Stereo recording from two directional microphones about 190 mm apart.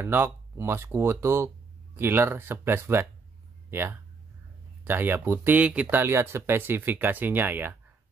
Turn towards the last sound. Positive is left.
turn(degrees=-10)  # may be behind; listen again after turning